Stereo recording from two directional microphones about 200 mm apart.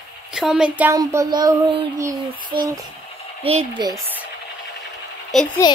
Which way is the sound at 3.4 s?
25° right (ahead or behind).